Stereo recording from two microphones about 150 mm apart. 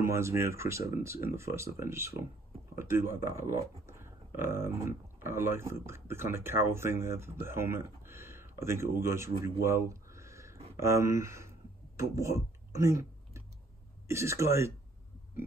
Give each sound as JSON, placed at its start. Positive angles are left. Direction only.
{"t": 0.0, "sound": "speech", "side_deg": -20}